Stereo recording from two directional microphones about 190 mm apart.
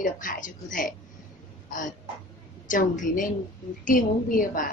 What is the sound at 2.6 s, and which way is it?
A woman's voice, 45° left (ahead or behind).